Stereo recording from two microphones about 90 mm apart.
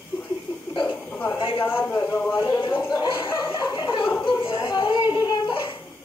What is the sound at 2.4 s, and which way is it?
Speech, 60° left (ahead or behind).